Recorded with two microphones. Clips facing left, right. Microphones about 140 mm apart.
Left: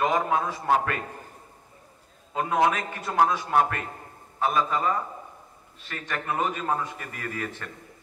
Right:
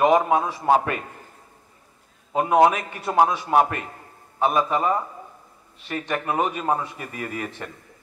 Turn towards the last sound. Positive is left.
turn(degrees=-20)  # may be behind; listen again after turning